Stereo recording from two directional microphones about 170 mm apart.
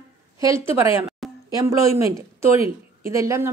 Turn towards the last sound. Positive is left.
turn(degrees=-15)  # may be behind; listen again after turning